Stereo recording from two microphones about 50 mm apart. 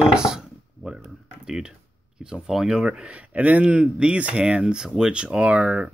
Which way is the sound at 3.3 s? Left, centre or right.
Right.